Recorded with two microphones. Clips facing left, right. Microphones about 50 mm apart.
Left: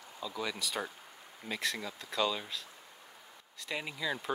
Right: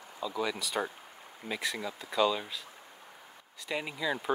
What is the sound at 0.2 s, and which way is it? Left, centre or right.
Speech, centre.